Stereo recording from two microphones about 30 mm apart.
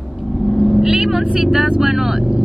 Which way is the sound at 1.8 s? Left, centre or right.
Centre.